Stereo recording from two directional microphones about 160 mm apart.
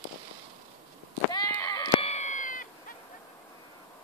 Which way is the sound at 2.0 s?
45° left (ahead or behind).